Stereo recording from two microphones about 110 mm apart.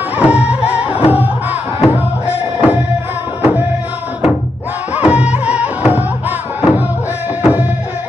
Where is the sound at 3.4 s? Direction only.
15° right (ahead or behind).